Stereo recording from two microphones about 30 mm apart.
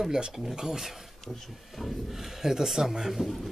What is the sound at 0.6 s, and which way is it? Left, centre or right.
Speech, centre.